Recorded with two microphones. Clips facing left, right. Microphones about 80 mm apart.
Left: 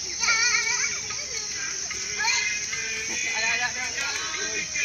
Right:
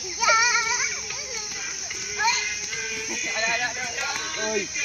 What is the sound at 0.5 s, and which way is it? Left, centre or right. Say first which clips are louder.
Baby cry: right 4 dB; right.